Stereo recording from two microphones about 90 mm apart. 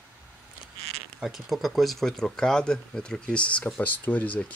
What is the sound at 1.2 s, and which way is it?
Speech, 5° right (ahead or behind).